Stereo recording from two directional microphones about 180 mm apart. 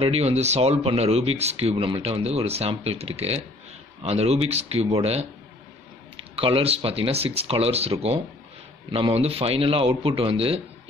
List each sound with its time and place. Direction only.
0.0 s speech: 35° right (ahead or behind)
6.3 s speech: 30° right (ahead or behind)